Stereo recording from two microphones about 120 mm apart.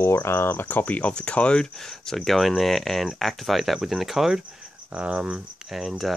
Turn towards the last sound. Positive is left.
turn(degrees=0)  # may be behind; listen again after turning